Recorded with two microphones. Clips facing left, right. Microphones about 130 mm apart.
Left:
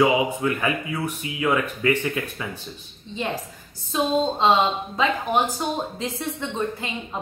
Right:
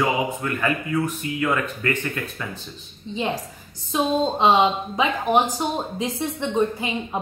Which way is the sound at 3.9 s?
15° right (ahead or behind).